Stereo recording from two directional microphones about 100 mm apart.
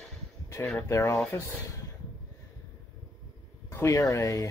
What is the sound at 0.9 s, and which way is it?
Speech, 30° left (ahead or behind).